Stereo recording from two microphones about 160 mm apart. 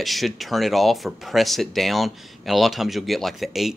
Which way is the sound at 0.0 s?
Centre (ahead or behind).